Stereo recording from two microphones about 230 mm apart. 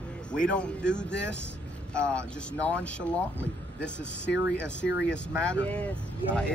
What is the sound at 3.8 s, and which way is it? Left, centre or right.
Speech, left.